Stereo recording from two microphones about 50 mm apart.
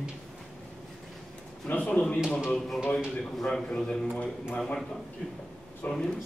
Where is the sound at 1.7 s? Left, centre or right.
Left.